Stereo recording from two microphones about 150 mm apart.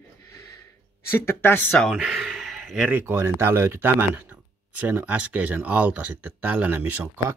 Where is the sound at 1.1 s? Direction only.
15° left (ahead or behind).